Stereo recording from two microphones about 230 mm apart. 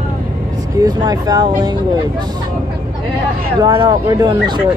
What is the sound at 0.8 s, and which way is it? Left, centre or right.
Speech, centre.